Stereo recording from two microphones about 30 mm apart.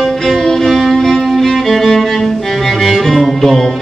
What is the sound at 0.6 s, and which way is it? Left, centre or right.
Violin, centre.